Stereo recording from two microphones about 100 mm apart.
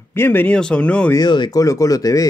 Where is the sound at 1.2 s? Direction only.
45° left (ahead or behind).